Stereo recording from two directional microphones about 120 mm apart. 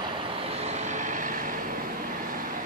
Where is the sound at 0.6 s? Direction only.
65° right (ahead or behind); by 1.5 s 90° right.